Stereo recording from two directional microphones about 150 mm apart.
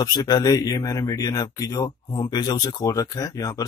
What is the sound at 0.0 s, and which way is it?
Speech, 25° left (ahead or behind).